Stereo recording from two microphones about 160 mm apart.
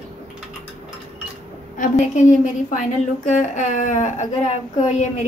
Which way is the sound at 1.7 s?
50° left (ahead or behind).